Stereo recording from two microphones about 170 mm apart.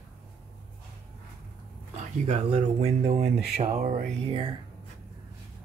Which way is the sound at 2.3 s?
40° right (ahead or behind).